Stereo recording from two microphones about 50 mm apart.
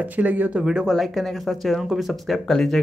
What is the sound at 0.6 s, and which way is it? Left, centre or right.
Speech, centre.